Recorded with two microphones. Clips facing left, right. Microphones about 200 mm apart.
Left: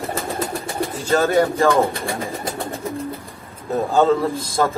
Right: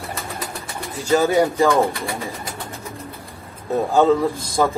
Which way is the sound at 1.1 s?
15° right (ahead or behind).